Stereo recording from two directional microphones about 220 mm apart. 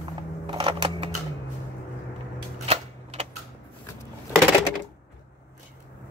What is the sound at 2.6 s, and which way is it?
Cap gun, 25° right (ahead or behind).